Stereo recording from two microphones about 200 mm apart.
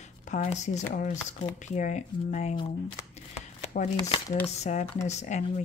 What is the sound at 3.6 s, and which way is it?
Shuffling cards, 35° left (ahead or behind).